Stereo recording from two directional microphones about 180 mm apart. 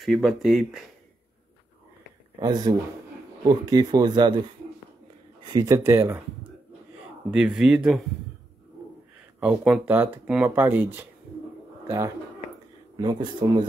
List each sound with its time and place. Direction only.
0.0 s speech: centre (ahead or behind)
2.3 s speech: 25° right (ahead or behind)
5.5 s speech: 20° right (ahead or behind)
7.2 s speech: 5° right (ahead or behind)
9.4 s speech: 5° right (ahead or behind)
12.9 s speech: 25° right (ahead or behind)